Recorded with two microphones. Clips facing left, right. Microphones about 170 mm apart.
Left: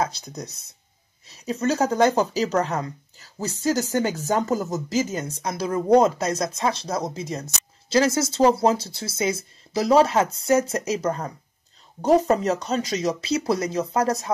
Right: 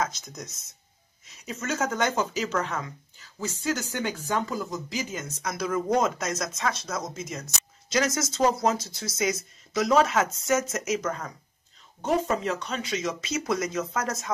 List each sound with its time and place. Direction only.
0.0 s speech: 35° left (ahead or behind)